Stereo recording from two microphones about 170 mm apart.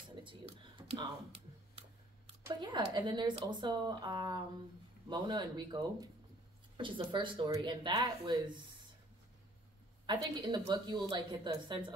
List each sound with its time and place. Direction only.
0.2 s computer keyboard: 30° right (ahead or behind)
2.4 s speech: 25° right (ahead or behind)
10.0 s speech: 25° right (ahead or behind)